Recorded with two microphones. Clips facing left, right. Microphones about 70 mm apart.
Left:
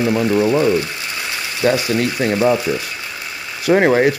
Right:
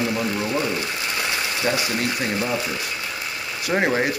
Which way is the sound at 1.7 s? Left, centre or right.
Left.